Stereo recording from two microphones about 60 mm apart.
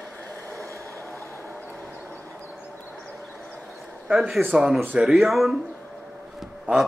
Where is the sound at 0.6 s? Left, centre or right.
Right.